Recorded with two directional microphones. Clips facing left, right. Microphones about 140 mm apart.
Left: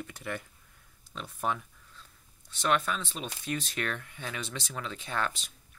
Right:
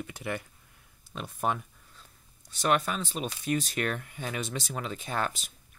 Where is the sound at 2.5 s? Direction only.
40° right (ahead or behind).